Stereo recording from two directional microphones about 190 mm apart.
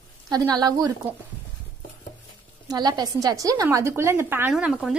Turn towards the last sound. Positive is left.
turn(degrees=-5)  # may be behind; listen again after turning